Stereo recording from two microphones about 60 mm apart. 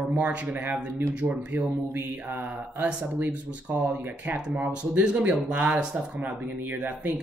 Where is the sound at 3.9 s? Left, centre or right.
Right.